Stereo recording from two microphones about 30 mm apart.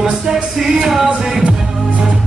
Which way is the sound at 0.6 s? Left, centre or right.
Centre.